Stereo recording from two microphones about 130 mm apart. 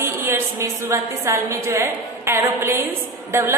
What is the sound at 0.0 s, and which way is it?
A woman's voice, 20° right (ahead or behind).